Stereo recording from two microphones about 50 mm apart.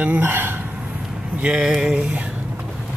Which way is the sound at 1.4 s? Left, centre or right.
Centre.